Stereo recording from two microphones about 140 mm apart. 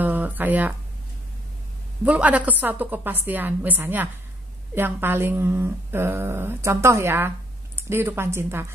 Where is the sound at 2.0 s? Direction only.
10° right (ahead or behind).